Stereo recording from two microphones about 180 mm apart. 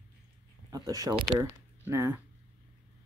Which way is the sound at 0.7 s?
20° right (ahead or behind).